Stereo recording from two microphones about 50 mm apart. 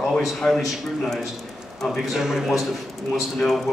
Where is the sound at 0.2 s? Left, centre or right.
Centre.